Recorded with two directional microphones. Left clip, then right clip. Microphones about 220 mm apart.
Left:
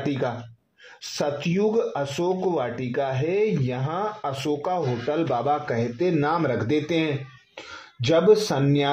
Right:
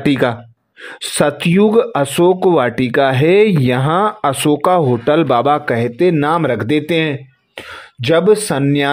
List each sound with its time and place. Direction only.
0.0 s speech: 45° right (ahead or behind)